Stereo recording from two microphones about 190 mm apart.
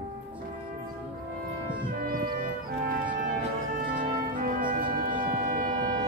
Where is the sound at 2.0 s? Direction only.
50° right (ahead or behind).